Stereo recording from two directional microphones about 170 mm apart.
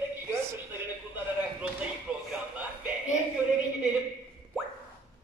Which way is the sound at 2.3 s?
5° right (ahead or behind).